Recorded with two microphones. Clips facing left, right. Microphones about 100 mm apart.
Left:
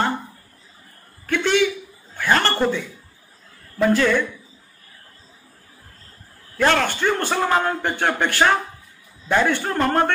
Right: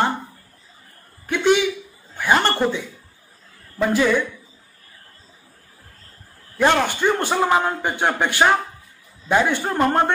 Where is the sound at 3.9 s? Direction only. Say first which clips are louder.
Right 4 dB; 15° right (ahead or behind).